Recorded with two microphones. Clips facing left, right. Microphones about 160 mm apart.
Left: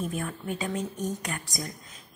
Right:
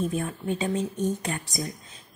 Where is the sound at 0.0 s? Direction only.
25° right (ahead or behind).